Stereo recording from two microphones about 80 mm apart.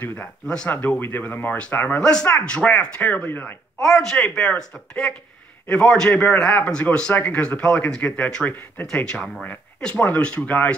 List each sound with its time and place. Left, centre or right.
0.0 s speech: left
2.0 s a man's voice: centre
3.8 s a man's voice: centre